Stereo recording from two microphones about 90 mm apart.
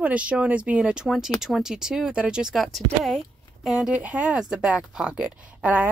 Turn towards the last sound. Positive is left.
turn(degrees=-15)  # may be behind; listen again after turning